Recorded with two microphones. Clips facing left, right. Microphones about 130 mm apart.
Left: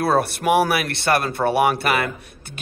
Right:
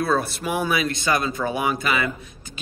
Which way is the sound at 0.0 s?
60° left (ahead or behind).